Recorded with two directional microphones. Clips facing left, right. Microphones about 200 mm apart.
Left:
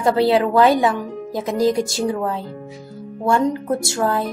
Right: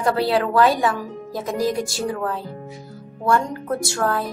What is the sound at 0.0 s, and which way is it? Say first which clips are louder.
Speech: left 4 dB; 25° left (ahead or behind).